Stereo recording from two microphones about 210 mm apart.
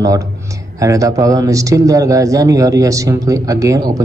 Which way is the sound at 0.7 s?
15° right (ahead or behind).